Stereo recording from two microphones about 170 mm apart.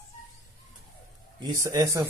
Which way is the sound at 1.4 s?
20° right (ahead or behind).